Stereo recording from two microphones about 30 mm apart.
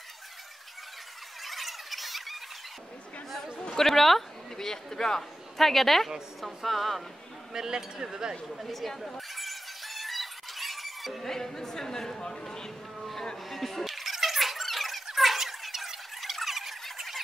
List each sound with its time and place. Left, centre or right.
1.4 s a sound: centre
3.7 s speech: centre
4.6 s speech: centre
5.6 s speech: centre
7.5 s speech: centre
8.7 s music: centre
11.2 s a sound: centre
13.5 s squeak: centre
15.1 s a sound: centre
16.8 s squawk: centre